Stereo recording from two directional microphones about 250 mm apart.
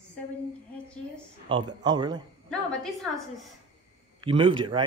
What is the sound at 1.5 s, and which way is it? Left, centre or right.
Speech, centre.